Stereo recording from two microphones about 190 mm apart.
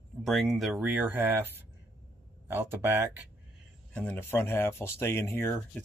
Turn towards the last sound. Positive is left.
turn(degrees=10)  # may be behind; listen again after turning